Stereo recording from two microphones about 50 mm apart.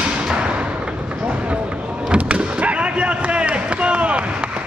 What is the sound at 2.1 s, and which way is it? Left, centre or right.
Basketball bounce, right.